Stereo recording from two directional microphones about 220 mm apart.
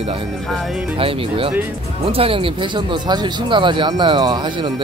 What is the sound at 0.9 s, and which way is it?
Speech, 25° right (ahead or behind).